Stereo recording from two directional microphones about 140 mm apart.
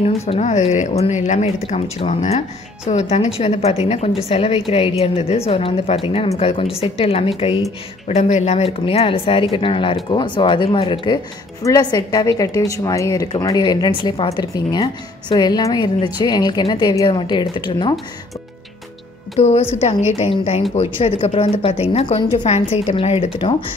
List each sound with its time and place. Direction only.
0.3 s speech: 55° left (ahead or behind)
2.0 s a woman's voice: 50° left (ahead or behind)
8.1 s a woman's voice: 55° left (ahead or behind); by 17.9 s 35° left (ahead or behind)
19.3 s a woman's voice: 50° left (ahead or behind)